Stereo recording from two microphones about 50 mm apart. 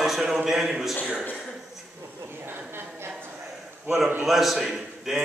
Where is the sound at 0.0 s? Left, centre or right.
Centre.